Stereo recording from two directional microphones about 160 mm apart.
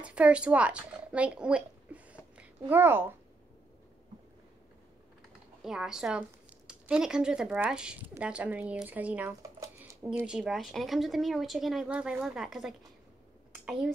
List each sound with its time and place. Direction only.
0.0 s speech: 5° right (ahead or behind)
5.6 s speech: 5° right (ahead or behind)
9.6 s a sound: 20° right (ahead or behind)
10.1 s speech: 5° right (ahead or behind)